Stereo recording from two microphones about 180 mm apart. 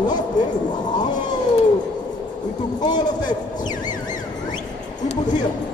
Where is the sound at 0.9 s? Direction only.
25° left (ahead or behind).